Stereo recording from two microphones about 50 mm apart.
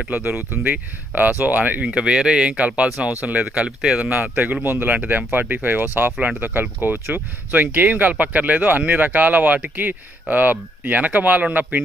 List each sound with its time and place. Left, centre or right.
0.1 s speech: right
1.9 s speech: centre; by 3.4 s right
3.5 s speech: right
4.1 s speech: right